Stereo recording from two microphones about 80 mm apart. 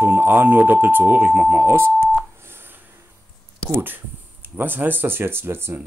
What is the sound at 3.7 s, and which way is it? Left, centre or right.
Speech, right.